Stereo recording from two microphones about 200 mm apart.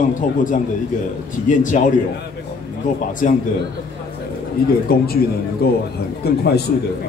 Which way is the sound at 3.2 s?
40° left (ahead or behind).